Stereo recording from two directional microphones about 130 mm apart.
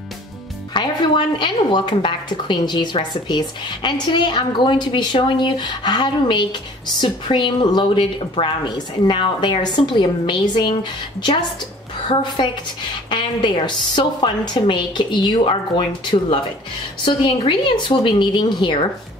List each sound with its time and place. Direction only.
0.7 s a woman's voice: 35° left (ahead or behind)
17.0 s a woman's voice: 40° left (ahead or behind)